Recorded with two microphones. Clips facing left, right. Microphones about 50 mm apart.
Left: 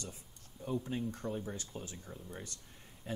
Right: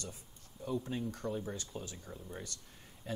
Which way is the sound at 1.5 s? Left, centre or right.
Left.